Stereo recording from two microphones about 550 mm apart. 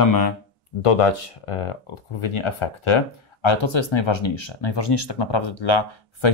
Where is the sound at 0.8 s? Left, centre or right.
Left.